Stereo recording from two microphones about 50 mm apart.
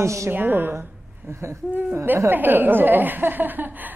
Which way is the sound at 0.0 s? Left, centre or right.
Right.